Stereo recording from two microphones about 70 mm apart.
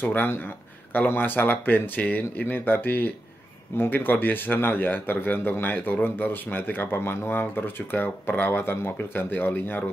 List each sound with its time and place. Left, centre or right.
0.0 s speech: left